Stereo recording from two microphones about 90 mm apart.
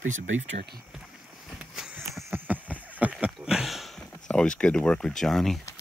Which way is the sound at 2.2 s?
25° right (ahead or behind).